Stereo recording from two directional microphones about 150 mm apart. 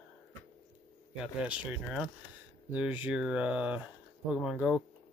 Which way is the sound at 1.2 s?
10° right (ahead or behind).